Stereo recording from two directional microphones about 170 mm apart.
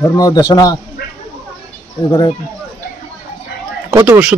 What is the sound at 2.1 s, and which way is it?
Speech, 20° left (ahead or behind).